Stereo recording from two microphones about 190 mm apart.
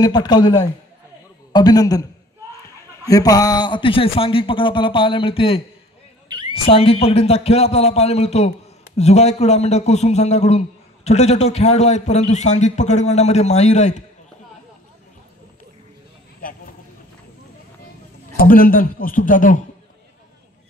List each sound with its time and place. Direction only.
0.0 s speech: 20° left (ahead or behind)
3.1 s speech: 20° left (ahead or behind)
6.2 s a sound: 25° right (ahead or behind)
6.5 s a man's voice: 30° left (ahead or behind)
16.3 s vehicle: 50° left (ahead or behind)
18.4 s a man's voice: 50° left (ahead or behind)